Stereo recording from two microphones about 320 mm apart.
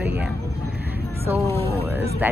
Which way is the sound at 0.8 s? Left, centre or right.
Right.